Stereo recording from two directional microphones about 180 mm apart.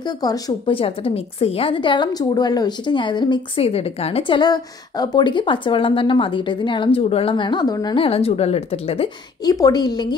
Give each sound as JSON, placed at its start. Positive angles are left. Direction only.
{"t": 0.0, "sound": "a woman's voice", "side_deg": 20}
{"t": 9.4, "sound": "a woman's voice", "side_deg": 20}